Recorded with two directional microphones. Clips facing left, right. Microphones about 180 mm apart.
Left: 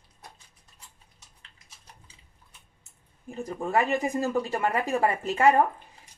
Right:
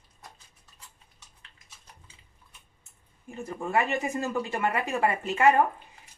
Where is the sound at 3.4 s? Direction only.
35° left (ahead or behind).